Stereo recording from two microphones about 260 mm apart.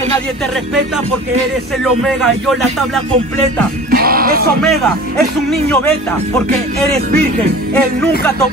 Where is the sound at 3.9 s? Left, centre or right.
Right.